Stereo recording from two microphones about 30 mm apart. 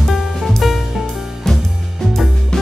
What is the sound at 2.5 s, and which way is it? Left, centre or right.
Music, centre.